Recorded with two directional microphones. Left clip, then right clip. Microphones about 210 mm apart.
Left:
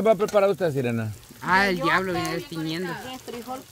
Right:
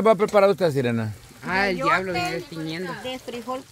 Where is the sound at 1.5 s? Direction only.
60° left (ahead or behind).